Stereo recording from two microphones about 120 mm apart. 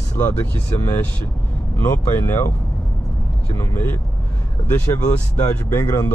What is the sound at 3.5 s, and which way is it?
Speech, 20° left (ahead or behind).